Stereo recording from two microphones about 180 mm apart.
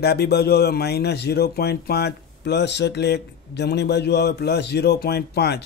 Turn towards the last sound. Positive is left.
turn(degrees=65)  # may be behind; listen again after turning